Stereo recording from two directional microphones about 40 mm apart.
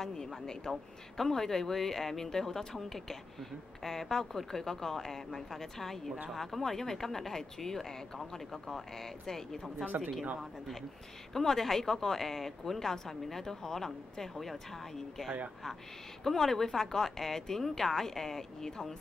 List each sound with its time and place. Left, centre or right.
0.5 s speech: centre
9.8 s speech: right
11.3 s speech: centre
16.3 s speech: centre